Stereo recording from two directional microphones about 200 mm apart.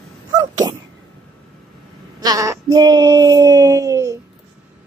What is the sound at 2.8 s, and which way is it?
Child singing, 20° right (ahead or behind).